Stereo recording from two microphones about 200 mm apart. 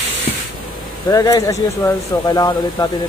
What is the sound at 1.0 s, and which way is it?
Speech, 15° left (ahead or behind).